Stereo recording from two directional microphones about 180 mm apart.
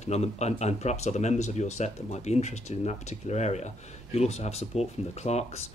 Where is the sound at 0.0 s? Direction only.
35° left (ahead or behind).